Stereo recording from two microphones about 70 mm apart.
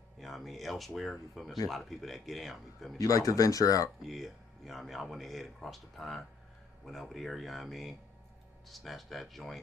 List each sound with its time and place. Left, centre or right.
0.2 s speech: centre
3.0 s speech: left
4.0 s speech: centre